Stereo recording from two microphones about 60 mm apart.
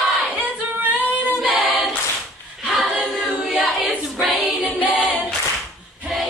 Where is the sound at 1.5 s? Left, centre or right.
Right.